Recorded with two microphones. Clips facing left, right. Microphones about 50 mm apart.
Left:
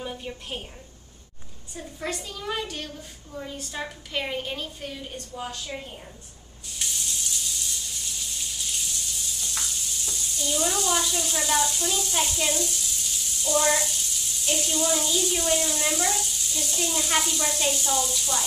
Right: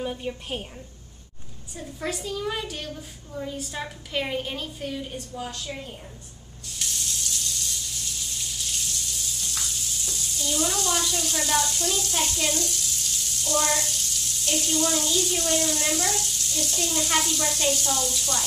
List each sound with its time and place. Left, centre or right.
0.0 s a woman's voice: centre
2.0 s a woman's voice: centre
6.8 s a sound: centre
8.3 s frying: centre